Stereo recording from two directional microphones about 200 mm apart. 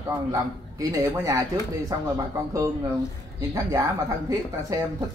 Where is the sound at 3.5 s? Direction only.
15° right (ahead or behind).